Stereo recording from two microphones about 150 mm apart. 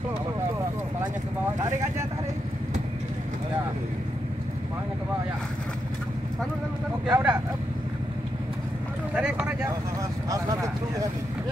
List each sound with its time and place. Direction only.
1.6 s speech: 20° right (ahead or behind)
7.1 s speech: 10° right (ahead or behind)
9.1 s vehicle: 5° right (ahead or behind)